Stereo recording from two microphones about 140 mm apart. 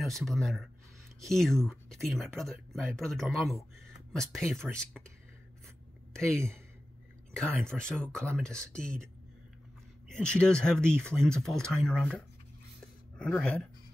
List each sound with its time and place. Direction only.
0.0 s speech: centre (ahead or behind)
6.1 s speech: 5° left (ahead or behind)
7.6 s speech: 5° left (ahead or behind)
12.8 s a sound: 5° left (ahead or behind)